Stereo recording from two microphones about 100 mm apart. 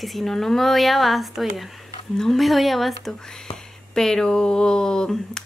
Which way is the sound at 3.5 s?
40° left (ahead or behind).